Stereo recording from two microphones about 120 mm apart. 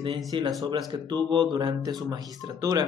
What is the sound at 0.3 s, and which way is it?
A man's voice, 40° right (ahead or behind).